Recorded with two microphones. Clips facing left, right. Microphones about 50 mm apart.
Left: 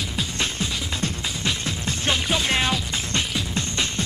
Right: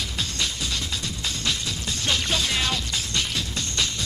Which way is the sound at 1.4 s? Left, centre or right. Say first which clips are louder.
Left 3 dB; left.